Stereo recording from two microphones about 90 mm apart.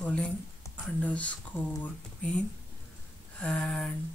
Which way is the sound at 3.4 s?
10° left (ahead or behind).